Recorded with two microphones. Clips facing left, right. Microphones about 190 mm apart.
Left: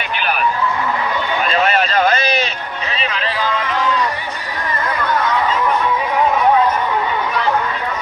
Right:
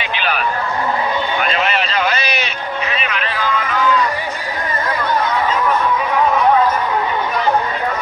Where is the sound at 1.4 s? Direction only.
40° left (ahead or behind).